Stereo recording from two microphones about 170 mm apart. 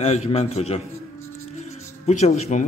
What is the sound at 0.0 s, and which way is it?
Speech, 40° left (ahead or behind).